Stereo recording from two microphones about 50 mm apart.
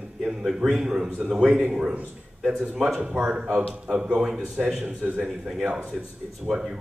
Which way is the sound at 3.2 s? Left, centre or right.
Centre.